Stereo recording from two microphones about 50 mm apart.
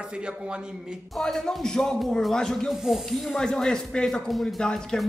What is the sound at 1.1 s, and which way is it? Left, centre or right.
Speech, centre.